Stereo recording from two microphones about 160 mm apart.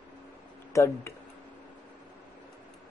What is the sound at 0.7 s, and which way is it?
Speech, 20° left (ahead or behind).